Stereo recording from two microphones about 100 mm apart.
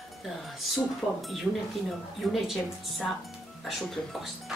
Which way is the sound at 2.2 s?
Centre (ahead or behind).